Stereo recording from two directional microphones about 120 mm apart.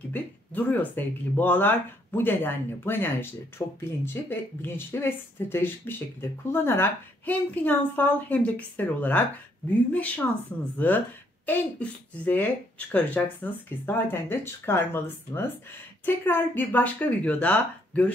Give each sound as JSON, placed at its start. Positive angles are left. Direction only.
{"t": 0.1, "sound": "speech", "side_deg": 15}
{"t": 11.4, "sound": "speech", "side_deg": 15}